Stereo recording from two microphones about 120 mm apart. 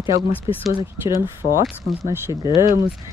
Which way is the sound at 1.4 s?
90° left.